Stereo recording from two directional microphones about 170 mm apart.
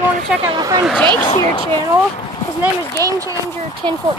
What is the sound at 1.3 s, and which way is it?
Speech, 25° left (ahead or behind).